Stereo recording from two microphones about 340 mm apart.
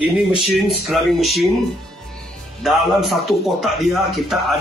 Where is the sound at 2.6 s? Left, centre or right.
Centre.